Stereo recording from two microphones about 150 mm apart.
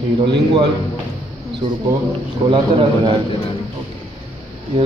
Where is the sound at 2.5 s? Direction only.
35° right (ahead or behind).